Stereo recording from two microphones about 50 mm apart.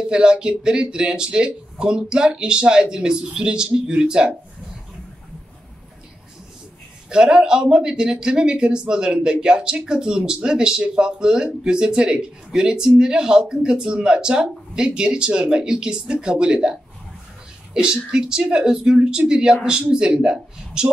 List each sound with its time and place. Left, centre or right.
0.0 s speech: centre
7.1 s speech: centre
18.1 s speech: centre